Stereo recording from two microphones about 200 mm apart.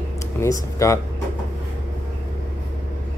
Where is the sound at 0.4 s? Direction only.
15° left (ahead or behind).